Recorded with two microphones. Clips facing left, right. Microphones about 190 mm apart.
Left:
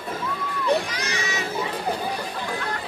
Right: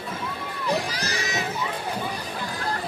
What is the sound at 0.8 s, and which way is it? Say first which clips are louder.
Crowd: left 1 dB; 35° right (ahead or behind).